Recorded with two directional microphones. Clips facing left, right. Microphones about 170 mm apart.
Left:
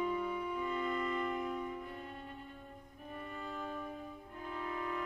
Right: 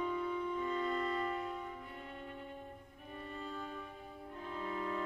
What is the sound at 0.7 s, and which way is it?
Music, 35° right (ahead or behind).